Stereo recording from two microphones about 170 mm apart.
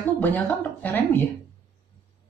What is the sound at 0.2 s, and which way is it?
Speech, 10° left (ahead or behind).